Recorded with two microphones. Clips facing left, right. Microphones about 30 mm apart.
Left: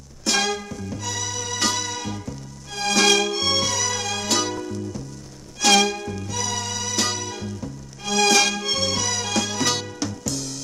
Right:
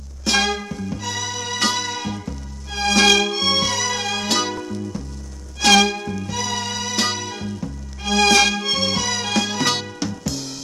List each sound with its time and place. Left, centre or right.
0.2 s music: centre